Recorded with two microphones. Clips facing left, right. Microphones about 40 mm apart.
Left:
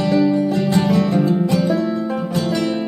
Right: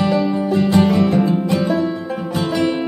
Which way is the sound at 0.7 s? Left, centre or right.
Centre.